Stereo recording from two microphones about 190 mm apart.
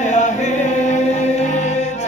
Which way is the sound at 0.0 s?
40° left (ahead or behind).